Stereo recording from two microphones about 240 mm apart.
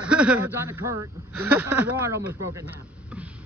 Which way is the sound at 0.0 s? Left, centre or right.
Centre.